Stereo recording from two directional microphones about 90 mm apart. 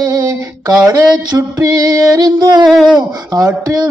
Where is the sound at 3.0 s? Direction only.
45° right (ahead or behind).